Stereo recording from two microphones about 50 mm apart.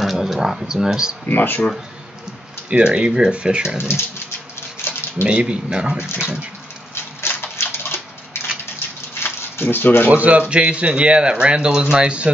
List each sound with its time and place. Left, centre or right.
0.0 s speech: centre
1.2 s speech: left
2.7 s speech: right
4.8 s a sound: left
5.2 s speech: right
6.0 s speech: left
7.2 s a sound: left
9.2 s a sound: left
10.0 s speech: right
10.5 s speech: right